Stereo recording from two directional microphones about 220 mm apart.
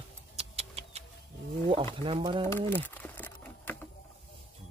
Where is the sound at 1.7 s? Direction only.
25° right (ahead or behind).